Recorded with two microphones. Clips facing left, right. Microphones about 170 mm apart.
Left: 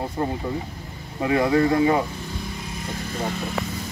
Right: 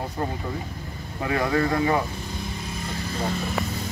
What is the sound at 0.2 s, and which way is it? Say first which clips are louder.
Speech: left 4 dB; 20° left (ahead or behind).